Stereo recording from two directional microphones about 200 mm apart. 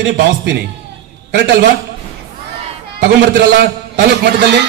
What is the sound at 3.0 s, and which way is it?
Speech, 55° right (ahead or behind).